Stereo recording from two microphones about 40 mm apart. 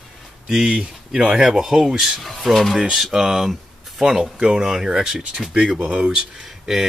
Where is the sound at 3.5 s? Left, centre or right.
Centre.